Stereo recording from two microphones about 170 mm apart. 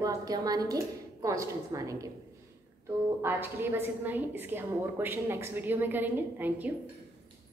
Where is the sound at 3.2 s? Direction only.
15° right (ahead or behind).